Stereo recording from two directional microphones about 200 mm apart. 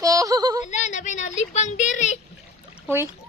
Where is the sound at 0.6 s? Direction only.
35° left (ahead or behind).